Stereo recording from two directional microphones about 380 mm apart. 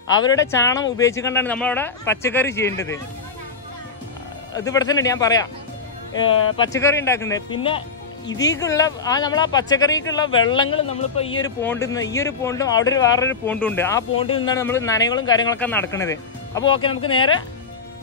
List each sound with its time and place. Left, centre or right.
0.2 s speech: centre
4.6 s speech: centre